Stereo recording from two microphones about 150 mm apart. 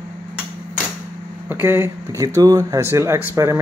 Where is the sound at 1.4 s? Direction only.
15° right (ahead or behind).